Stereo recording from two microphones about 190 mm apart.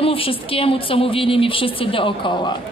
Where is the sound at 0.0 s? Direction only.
30° left (ahead or behind).